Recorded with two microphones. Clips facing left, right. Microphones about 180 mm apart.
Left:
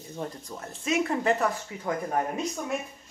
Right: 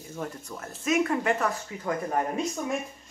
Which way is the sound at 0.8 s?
30° left (ahead or behind).